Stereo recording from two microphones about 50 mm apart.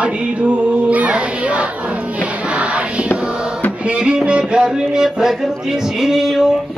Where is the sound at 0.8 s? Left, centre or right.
Right.